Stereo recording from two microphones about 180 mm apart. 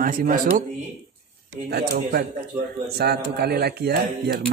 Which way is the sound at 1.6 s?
60° right (ahead or behind).